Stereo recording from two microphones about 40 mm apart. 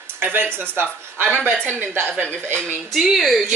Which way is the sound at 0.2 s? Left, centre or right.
Right.